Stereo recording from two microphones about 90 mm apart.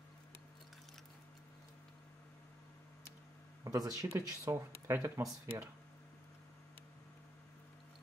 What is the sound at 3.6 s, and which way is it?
Speech, 40° right (ahead or behind).